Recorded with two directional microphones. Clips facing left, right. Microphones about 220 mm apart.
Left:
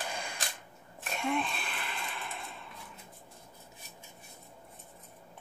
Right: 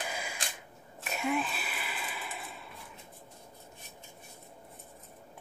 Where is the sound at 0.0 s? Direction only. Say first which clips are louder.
Even; 5° right (ahead or behind).